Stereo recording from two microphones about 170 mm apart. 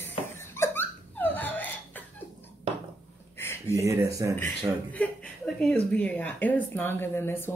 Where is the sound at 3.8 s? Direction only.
15° right (ahead or behind).